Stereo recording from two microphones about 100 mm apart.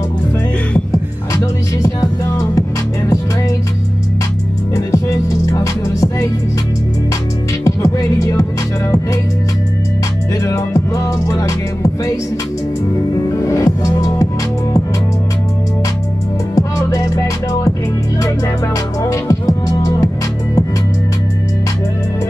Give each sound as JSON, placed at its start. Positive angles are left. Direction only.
{"t": 0.9, "sound": "music", "side_deg": 35}
{"t": 4.7, "sound": "music", "side_deg": 35}
{"t": 7.6, "sound": "music", "side_deg": 35}
{"t": 10.4, "sound": "music", "side_deg": 30}
{"t": 13.1, "sound": "music", "side_deg": 35}
{"t": 16.5, "sound": "music", "side_deg": 35}
{"t": 19.0, "sound": "music", "side_deg": 35}